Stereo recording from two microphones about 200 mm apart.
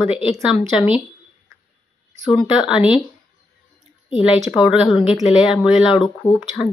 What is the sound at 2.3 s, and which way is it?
Speech, 5° right (ahead or behind).